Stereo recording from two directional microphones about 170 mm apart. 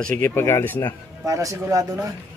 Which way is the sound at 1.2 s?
20° right (ahead or behind).